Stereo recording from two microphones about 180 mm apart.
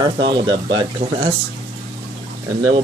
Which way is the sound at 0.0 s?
25° right (ahead or behind).